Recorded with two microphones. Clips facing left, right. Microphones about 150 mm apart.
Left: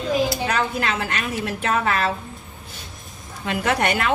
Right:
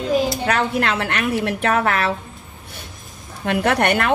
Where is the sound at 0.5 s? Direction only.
65° right (ahead or behind).